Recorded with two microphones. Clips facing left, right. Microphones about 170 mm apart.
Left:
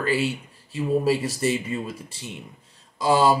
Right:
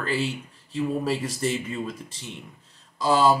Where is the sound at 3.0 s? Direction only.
15° left (ahead or behind).